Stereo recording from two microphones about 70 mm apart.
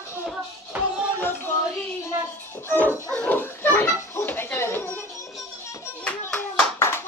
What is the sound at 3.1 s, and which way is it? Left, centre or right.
Dog, centre.